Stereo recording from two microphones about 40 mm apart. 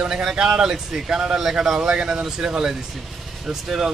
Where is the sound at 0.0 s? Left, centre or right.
Centre.